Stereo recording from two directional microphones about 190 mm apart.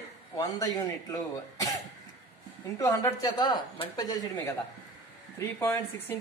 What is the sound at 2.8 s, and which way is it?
A woman's voice, 20° left (ahead or behind).